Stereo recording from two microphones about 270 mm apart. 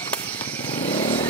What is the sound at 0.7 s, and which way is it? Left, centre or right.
Motorcycle, centre.